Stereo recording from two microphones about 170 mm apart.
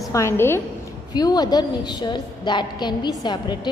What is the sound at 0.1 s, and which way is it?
A woman's voice, 15° left (ahead or behind).